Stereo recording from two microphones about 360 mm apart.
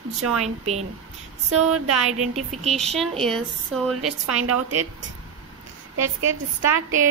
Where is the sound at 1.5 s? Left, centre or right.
Right.